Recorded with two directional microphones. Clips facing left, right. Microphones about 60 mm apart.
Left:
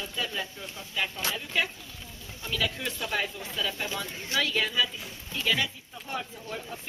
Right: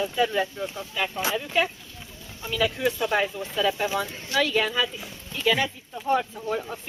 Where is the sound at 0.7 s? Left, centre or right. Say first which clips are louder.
Right 4 dB; right.